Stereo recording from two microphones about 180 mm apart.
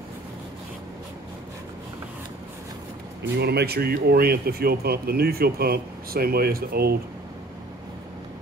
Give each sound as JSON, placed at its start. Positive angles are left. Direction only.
{"t": 3.2, "sound": "speech", "side_deg": -65}